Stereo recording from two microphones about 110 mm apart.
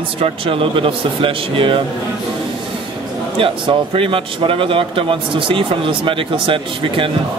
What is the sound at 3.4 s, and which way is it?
A man's voice, 50° right (ahead or behind).